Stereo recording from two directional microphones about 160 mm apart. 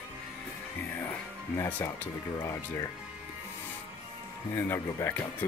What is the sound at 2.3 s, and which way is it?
Speech, 25° left (ahead or behind).